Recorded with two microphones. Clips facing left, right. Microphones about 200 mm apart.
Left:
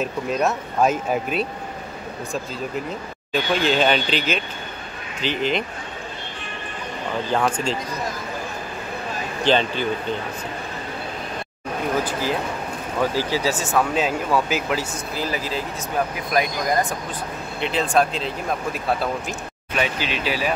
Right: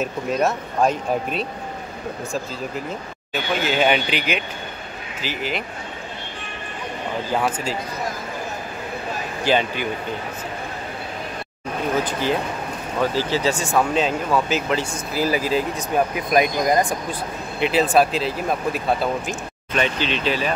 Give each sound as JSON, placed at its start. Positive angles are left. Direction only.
{"t": 0.0, "sound": "speech", "side_deg": 0}
{"t": 3.6, "sound": "speech", "side_deg": -10}
{"t": 7.3, "sound": "speech", "side_deg": -5}
{"t": 9.4, "sound": "speech", "side_deg": -10}
{"t": 12.0, "sound": "speech", "side_deg": 5}
{"t": 15.1, "sound": "speech", "side_deg": -10}
{"t": 17.6, "sound": "speech", "side_deg": -5}